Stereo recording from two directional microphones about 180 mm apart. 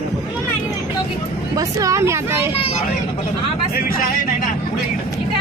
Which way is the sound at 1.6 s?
20° right (ahead or behind).